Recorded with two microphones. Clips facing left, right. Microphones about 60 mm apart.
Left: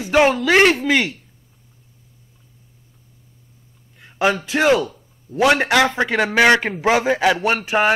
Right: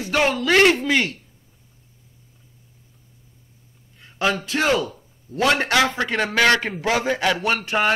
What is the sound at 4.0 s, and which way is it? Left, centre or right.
A man's voice, centre.